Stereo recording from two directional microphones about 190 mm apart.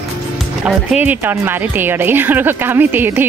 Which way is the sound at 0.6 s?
5° right (ahead or behind).